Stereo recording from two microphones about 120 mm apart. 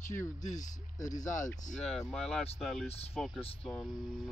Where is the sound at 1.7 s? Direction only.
5° left (ahead or behind).